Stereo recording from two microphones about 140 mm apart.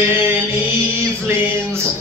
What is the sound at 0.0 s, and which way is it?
Mantra, 15° right (ahead or behind).